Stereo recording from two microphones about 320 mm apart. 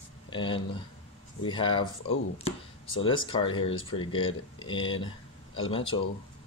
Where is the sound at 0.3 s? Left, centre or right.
Centre.